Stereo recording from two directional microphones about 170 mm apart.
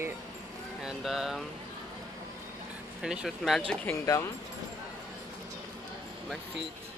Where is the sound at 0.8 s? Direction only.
Centre (ahead or behind).